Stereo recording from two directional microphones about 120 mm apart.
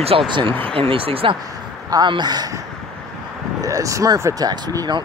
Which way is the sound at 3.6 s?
30° right (ahead or behind).